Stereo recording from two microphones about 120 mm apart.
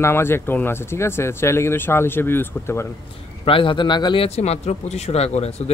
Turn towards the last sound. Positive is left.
turn(degrees=60)  # may be behind; listen again after turning